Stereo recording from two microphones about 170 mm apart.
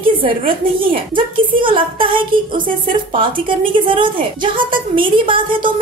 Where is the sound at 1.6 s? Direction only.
30° right (ahead or behind).